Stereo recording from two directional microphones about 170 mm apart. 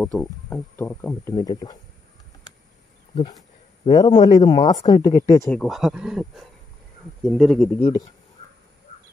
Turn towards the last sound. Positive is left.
turn(degrees=0)  # may be behind; listen again after turning